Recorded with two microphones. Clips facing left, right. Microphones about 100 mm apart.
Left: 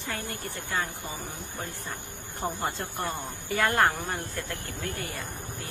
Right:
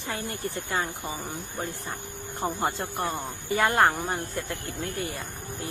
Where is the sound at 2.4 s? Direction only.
20° right (ahead or behind).